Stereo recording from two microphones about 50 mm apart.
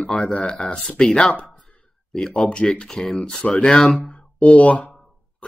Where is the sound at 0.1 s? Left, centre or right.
Centre.